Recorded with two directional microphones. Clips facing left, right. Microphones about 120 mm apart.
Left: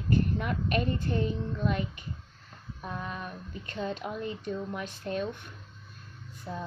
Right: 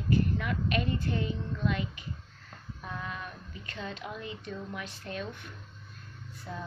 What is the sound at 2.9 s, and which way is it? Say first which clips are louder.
A woman's voice: left 2 dB; 30° left (ahead or behind).